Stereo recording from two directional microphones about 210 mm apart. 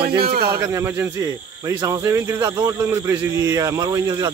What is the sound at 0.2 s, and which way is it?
Speech, 45° right (ahead or behind).